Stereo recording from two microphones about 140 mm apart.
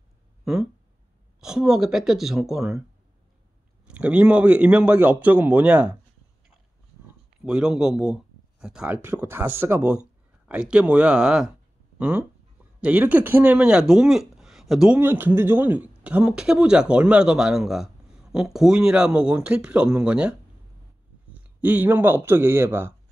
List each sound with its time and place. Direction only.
0.5 s speech: centre (ahead or behind)
3.8 s speech: 10° right (ahead or behind)
7.4 s speech: 5° right (ahead or behind)
15.0 s a man's voice: 15° right (ahead or behind)